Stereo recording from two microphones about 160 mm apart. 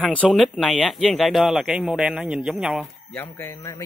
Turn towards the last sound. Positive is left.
turn(degrees=15)  # may be behind; listen again after turning